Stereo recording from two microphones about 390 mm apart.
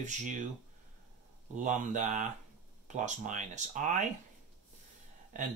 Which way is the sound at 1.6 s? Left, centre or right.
Centre.